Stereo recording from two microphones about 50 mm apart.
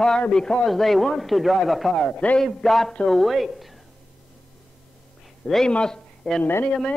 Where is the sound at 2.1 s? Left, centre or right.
Left.